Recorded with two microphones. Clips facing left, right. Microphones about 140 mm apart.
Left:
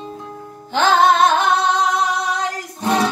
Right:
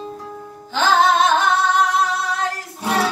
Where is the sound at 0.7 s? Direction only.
55° left (ahead or behind).